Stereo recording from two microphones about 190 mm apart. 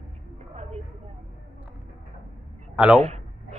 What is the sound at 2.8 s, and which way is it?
Speech, 5° right (ahead or behind).